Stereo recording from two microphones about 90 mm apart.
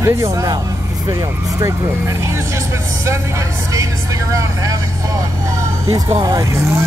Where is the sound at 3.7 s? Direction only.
35° right (ahead or behind).